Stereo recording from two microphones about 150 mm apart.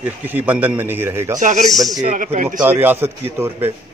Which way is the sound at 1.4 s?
55° right (ahead or behind).